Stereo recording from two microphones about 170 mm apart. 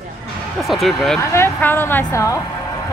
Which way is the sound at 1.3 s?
15° left (ahead or behind).